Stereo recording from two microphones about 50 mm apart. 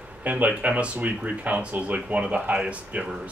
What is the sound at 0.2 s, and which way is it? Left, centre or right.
Speech, right.